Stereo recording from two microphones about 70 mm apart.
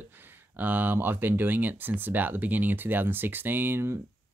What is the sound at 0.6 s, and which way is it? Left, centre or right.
Speech, right.